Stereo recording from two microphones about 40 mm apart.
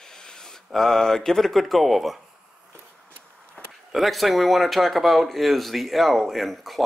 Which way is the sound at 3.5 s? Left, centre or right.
Centre.